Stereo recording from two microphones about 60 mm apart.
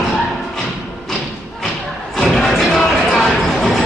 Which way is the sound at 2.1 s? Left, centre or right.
Centre.